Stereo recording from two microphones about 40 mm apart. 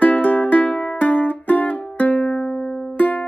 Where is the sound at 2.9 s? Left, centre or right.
Left.